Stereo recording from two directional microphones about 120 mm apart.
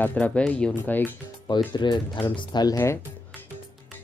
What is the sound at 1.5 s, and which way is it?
Speech, 40° left (ahead or behind).